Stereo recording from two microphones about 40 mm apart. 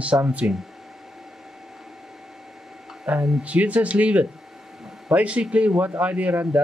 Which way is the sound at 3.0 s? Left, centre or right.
Right.